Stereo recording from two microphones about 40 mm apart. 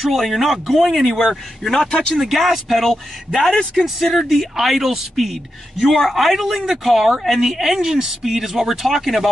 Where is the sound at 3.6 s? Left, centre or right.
Centre.